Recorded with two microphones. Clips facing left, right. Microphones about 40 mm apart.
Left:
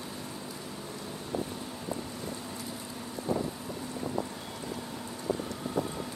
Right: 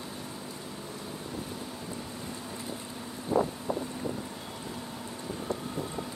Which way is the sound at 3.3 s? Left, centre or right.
Centre.